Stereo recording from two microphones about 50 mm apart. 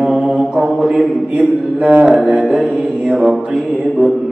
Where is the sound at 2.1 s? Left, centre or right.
Centre.